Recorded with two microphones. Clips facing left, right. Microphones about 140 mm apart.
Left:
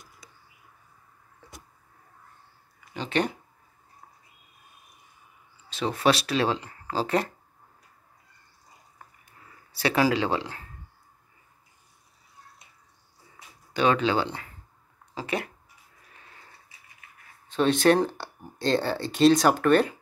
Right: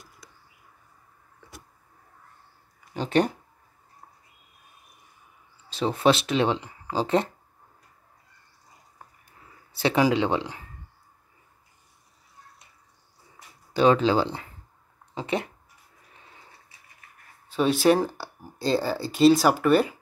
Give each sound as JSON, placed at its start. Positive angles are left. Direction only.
{"t": 2.9, "sound": "speech", "side_deg": -40}
{"t": 5.7, "sound": "speech", "side_deg": -30}
{"t": 9.7, "sound": "speech", "side_deg": -25}
{"t": 13.7, "sound": "speech", "side_deg": -30}
{"t": 16.1, "sound": "a sound", "side_deg": -20}
{"t": 17.5, "sound": "speech", "side_deg": -5}